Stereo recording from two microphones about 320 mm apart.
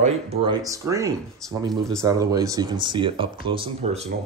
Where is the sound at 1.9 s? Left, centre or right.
Centre.